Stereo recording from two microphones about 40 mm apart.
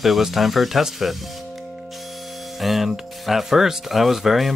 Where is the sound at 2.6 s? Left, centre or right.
Centre.